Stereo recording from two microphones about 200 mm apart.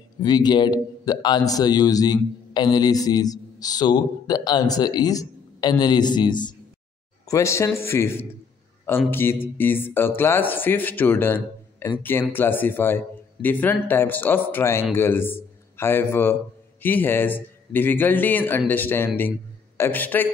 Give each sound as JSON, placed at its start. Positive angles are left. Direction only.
{"t": 0.2, "sound": "a man's voice", "side_deg": 20}